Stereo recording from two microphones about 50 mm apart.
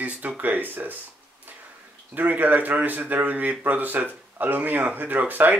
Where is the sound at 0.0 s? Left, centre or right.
Right.